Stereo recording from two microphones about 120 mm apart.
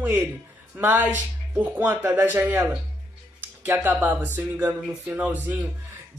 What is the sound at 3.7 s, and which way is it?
Speech, 15° right (ahead or behind).